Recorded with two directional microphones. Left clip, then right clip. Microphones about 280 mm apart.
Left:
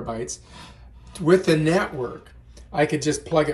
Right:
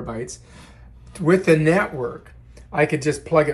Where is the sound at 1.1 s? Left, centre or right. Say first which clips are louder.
Right 2 dB; left.